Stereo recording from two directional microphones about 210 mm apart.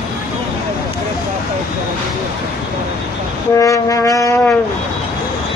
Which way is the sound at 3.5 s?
15° left (ahead or behind).